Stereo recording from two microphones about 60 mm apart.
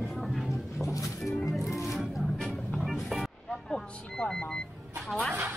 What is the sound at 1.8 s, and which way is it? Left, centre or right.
Music, centre.